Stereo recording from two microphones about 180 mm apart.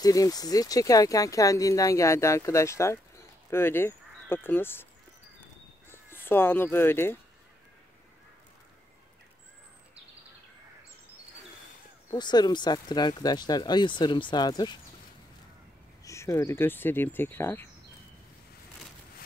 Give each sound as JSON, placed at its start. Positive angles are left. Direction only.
{"t": 0.0, "sound": "speech", "side_deg": 20}
{"t": 5.9, "sound": "speech", "side_deg": 10}
{"t": 12.1, "sound": "speech", "side_deg": 25}
{"t": 16.0, "sound": "speech", "side_deg": 15}